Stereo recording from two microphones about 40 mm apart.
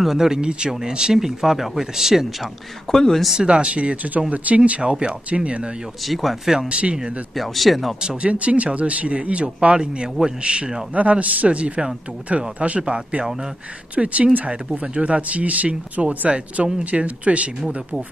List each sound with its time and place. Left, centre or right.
0.0 s speech: centre
2.9 s speech: centre
3.4 s speech: right
3.7 s speech: right
6.0 s speech: centre
6.7 s speech: right
7.3 s speech: centre
8.2 s speech: right
13.2 s speech: centre
13.9 s speech: right